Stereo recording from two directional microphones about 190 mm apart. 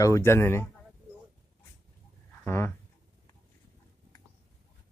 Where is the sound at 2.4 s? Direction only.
10° left (ahead or behind).